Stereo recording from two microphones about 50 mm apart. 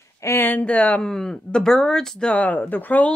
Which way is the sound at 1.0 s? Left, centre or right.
Centre.